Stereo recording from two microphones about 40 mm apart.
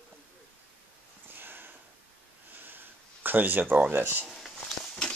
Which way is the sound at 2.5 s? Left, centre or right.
Right.